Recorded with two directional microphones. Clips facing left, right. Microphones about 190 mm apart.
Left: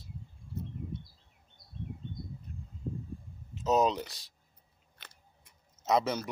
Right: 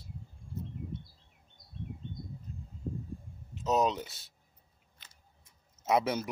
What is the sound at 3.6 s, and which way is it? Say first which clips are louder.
Speech: left 2 dB; centre (ahead or behind).